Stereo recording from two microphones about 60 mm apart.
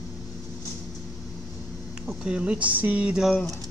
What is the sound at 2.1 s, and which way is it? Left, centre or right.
Speech, centre.